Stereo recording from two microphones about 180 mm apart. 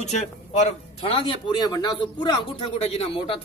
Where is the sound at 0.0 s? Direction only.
40° left (ahead or behind).